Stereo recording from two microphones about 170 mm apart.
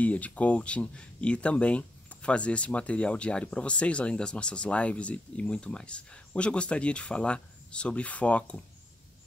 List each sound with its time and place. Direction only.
0.0 s speech: 10° left (ahead or behind)